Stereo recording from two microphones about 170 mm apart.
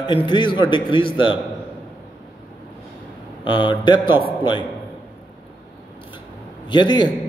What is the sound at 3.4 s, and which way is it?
Speech, 30° left (ahead or behind).